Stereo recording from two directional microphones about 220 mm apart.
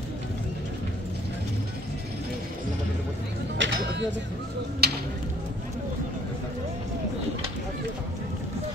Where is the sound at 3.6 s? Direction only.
55° right (ahead or behind).